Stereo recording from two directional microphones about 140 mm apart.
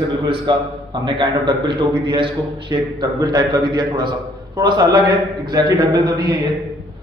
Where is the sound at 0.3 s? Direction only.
35° right (ahead or behind).